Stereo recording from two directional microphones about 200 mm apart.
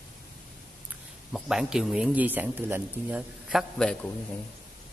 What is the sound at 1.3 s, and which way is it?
Speech, 5° right (ahead or behind).